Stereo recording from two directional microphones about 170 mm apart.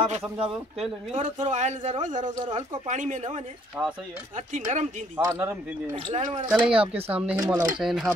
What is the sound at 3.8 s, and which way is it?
Speech, 15° right (ahead or behind).